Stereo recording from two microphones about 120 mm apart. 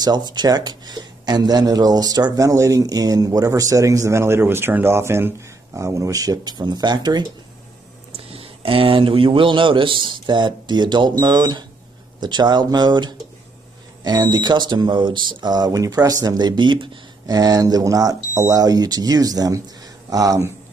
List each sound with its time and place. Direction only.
0.0 s a man's voice: 35° right (ahead or behind)
8.3 s a man's voice: 50° right (ahead or behind); by 20.5 s 25° right (ahead or behind)